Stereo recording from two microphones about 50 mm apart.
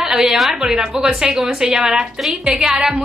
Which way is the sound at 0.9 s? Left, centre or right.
Right.